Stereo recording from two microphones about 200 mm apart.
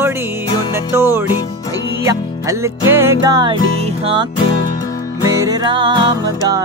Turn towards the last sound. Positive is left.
turn(degrees=-25)  # may be behind; listen again after turning